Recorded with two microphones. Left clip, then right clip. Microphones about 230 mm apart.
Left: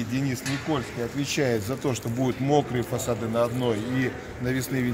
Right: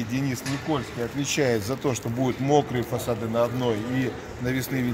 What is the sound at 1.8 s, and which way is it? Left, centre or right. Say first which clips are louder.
Speech: right 1 dB; centre.